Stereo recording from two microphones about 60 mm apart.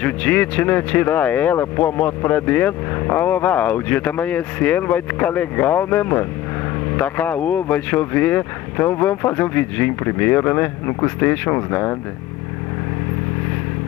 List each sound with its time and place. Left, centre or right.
0.0 s speech: left